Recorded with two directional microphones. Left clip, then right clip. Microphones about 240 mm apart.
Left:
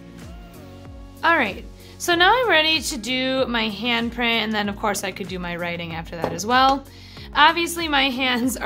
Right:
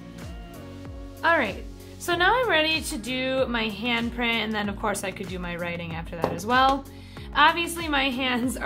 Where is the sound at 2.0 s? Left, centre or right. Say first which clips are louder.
Left 5 dB; left.